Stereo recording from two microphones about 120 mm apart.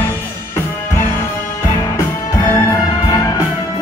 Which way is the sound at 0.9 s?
20° left (ahead or behind).